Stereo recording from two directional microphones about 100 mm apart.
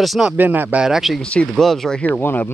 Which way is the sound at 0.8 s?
5° right (ahead or behind).